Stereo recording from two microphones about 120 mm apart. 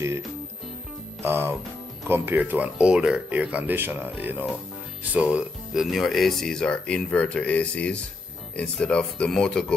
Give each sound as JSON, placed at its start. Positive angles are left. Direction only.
{"t": 1.2, "sound": "speech", "side_deg": -20}